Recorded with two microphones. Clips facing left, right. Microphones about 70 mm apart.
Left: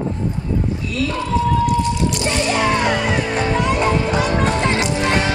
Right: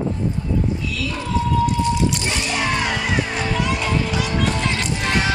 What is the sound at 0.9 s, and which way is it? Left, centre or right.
Clip-clop, left.